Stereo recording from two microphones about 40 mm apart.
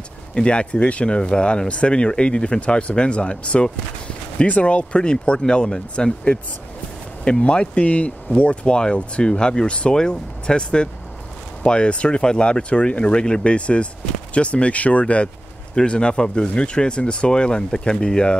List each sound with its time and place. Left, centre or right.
0.3 s speech: left
1.0 s speech: left
4.5 s speech: left
7.2 s speech: left
15.7 s speech: left